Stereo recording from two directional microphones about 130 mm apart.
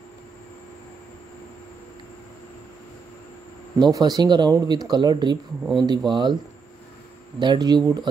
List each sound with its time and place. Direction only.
3.7 s speech: 30° right (ahead or behind)
7.3 s speech: 35° right (ahead or behind)